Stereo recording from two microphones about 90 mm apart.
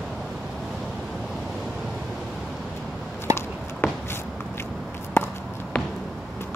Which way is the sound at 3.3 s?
25° left (ahead or behind).